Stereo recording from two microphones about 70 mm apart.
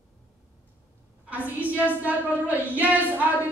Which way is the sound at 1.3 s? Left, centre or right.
Right.